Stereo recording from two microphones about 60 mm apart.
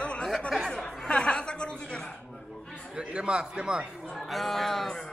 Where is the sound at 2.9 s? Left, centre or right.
Centre.